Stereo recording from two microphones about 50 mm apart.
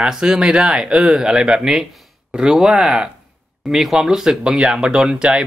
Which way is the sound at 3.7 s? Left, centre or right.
Centre.